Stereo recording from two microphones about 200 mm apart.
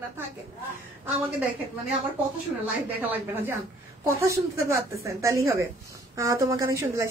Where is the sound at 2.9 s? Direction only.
10° right (ahead or behind).